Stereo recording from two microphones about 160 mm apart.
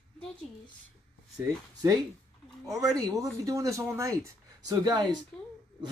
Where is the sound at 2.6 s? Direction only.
20° right (ahead or behind).